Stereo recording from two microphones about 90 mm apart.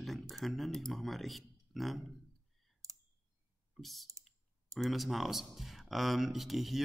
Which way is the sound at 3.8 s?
Centre (ahead or behind).